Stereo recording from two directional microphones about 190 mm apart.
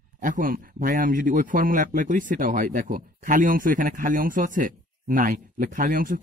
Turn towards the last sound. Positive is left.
turn(degrees=-50)  # may be behind; listen again after turning